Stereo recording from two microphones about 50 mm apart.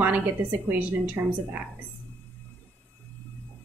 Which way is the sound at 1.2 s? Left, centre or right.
Right.